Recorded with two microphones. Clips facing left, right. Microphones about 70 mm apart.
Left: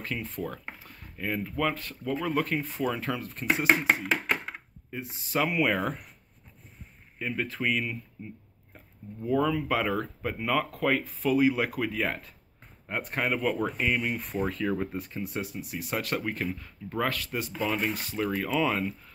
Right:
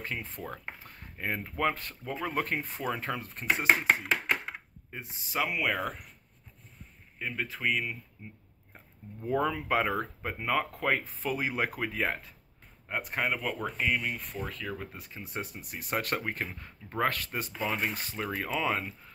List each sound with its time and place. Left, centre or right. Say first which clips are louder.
0.0 s speech: left 4 dB; right
0.8 s a sound: left 2 dB; right
1.6 s speech: right 1 dB; right
2.8 s speech: left 3 dB; centre
3.6 s chopping: left 1 dB; centre
5.3 s speech: left 4 dB; centre
7.2 s speech: left 4 dB; centre
9.2 s speech: left 3 dB; right; by 12.3 s centre
13.0 s speech: left 4 dB; centre
15.0 s speech: left 10 dB; centre
15.2 s speech: left 4 dB; right
16.5 s speech: left 2 dB; right
17.6 s speech: left 3 dB; centre